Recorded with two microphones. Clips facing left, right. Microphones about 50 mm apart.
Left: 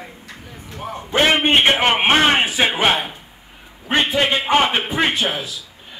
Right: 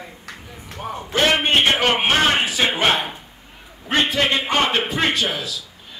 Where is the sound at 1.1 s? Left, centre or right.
Left.